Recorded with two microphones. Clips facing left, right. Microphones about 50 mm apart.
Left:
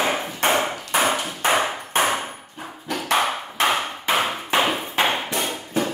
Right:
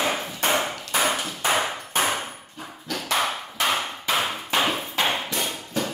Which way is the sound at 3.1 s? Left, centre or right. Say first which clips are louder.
Left 4 dB; left.